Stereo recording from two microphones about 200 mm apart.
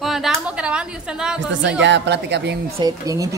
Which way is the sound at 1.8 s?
60° right (ahead or behind).